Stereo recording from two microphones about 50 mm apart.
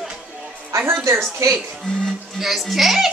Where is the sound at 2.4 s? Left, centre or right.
Centre.